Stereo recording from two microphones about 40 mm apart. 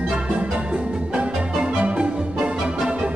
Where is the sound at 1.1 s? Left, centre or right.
Right.